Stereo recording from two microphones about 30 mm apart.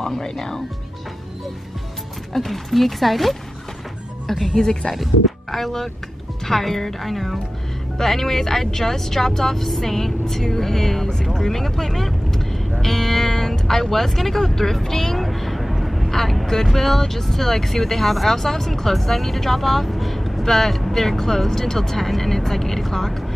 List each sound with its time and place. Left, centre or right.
0.0 s speech: centre
2.3 s speech: centre
4.9 s speech: centre
5.6 s speech: centre